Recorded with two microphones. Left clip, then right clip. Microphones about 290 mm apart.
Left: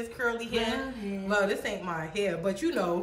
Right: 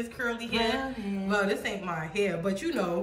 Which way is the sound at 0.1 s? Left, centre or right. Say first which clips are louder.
Left 2 dB; centre.